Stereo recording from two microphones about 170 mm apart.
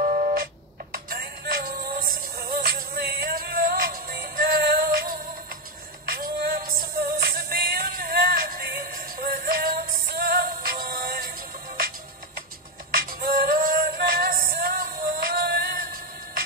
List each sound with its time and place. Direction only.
0.0 s music: 45° right (ahead or behind)
0.9 s music: 60° right (ahead or behind)
13.0 s music: 60° right (ahead or behind)